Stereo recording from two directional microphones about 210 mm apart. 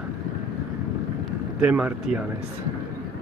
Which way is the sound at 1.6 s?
5° right (ahead or behind).